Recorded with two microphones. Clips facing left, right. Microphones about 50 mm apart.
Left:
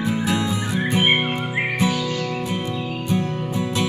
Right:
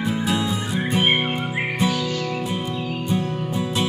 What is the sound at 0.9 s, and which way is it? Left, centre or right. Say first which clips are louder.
Music: left 1 dB; centre.